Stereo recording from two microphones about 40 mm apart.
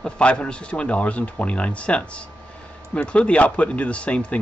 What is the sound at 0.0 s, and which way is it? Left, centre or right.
A man's voice, left.